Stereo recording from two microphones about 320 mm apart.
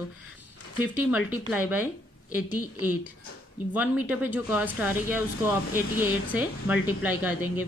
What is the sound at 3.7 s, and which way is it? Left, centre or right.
Speech, centre.